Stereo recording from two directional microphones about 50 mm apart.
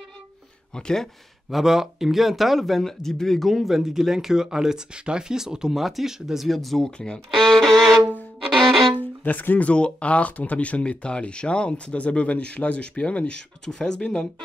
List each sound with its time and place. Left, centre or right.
0.7 s speech: centre
1.5 s speech: centre
6.8 s speech: centre
7.4 s violin: centre
9.2 s speech: left
9.7 s speech: left